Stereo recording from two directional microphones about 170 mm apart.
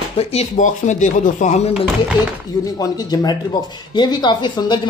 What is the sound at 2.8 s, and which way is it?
Speech, 20° left (ahead or behind).